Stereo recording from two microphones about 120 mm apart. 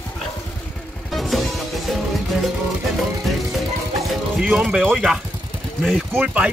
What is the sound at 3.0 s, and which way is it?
Music, centre (ahead or behind).